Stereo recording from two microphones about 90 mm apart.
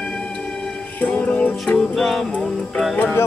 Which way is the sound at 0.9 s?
15° left (ahead or behind).